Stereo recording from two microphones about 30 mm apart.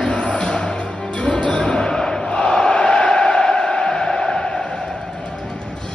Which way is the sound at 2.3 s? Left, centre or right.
Left.